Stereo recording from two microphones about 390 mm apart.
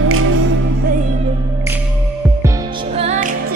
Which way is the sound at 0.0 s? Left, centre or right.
Right.